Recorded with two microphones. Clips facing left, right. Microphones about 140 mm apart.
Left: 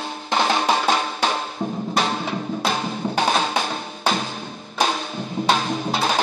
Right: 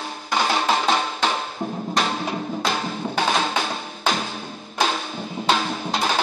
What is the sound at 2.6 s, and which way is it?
Music, 15° left (ahead or behind).